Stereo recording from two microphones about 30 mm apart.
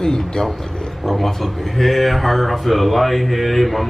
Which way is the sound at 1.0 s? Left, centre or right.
Centre.